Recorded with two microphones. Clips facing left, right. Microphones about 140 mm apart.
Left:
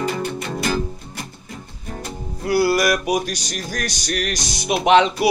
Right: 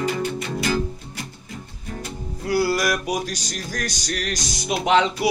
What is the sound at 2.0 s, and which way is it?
Music, 60° left (ahead or behind).